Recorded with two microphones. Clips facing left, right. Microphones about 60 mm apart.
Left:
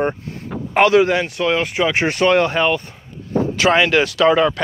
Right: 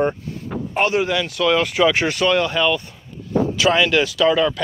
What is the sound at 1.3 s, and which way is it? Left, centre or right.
Speech, left.